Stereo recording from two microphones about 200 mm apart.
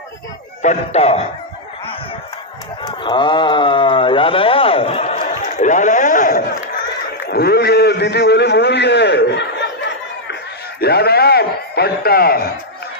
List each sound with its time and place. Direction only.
0.6 s speech: 35° left (ahead or behind)
2.8 s speech: 25° left (ahead or behind)
5.2 s a sound: 40° left (ahead or behind); by 9.7 s 60° left (ahead or behind)
10.8 s a man's voice: 50° left (ahead or behind)